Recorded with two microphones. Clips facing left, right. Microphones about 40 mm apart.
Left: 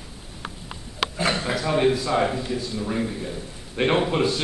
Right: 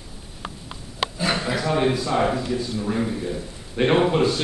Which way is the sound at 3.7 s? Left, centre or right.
Centre.